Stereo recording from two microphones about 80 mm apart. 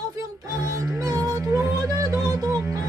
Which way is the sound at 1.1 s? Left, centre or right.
Right.